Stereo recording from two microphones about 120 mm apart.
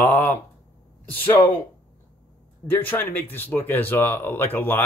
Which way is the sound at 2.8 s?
15° left (ahead or behind).